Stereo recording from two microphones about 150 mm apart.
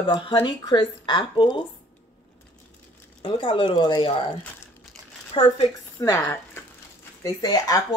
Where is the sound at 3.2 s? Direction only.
35° left (ahead or behind).